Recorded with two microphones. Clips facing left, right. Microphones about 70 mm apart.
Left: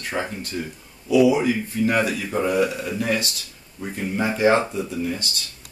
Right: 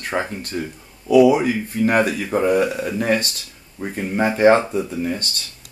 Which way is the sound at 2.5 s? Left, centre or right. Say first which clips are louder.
Right 2 dB; right.